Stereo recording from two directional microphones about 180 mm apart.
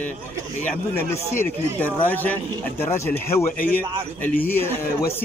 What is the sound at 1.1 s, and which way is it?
A man's voice, 15° left (ahead or behind).